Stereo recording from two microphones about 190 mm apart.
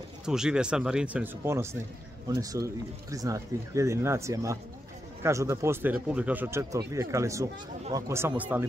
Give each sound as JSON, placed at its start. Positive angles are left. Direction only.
{"t": 0.2, "sound": "speech", "side_deg": -5}